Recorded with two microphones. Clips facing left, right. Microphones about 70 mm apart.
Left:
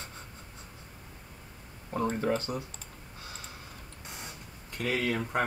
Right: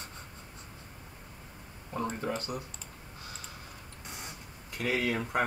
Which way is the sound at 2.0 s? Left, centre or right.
Left.